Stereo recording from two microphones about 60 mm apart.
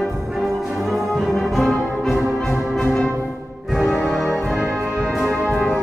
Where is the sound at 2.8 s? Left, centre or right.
Centre.